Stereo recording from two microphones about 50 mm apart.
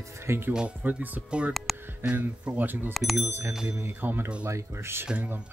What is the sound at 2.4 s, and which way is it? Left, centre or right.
Speech, right.